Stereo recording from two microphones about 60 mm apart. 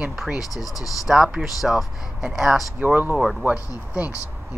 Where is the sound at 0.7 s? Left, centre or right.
Left.